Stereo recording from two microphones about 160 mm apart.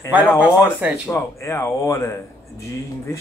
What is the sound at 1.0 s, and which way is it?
Speech, 20° left (ahead or behind).